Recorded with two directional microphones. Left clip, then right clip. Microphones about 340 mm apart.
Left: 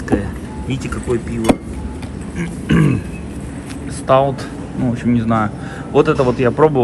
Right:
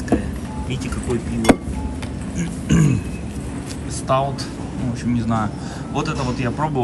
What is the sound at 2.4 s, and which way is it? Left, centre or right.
Speech, centre.